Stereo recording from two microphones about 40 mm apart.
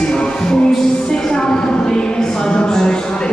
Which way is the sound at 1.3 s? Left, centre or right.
Left.